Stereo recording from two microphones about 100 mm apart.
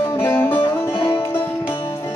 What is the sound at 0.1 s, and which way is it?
Music, 25° left (ahead or behind).